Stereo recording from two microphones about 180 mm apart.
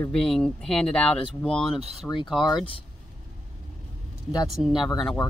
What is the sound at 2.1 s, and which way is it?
Speech, 15° left (ahead or behind).